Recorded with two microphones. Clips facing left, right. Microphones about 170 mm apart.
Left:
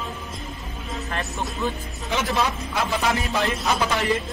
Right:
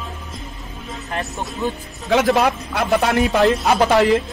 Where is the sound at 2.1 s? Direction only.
80° right; by 3.4 s 65° right (ahead or behind).